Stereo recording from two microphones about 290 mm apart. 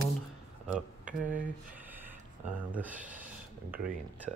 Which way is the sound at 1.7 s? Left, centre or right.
Centre.